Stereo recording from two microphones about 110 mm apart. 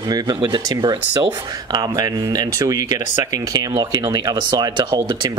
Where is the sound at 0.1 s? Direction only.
40° right (ahead or behind).